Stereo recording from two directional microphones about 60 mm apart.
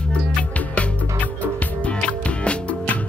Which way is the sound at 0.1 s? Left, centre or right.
Left.